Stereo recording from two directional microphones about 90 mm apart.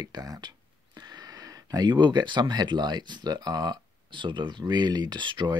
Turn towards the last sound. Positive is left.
turn(degrees=-60)  # may be behind; listen again after turning